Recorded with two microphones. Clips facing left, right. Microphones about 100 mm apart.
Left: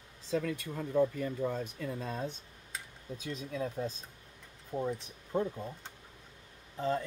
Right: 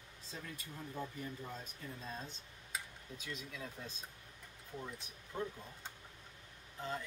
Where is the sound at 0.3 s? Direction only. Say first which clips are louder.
Left 16 dB; 80° left; by 2.3 s 65° left (ahead or behind).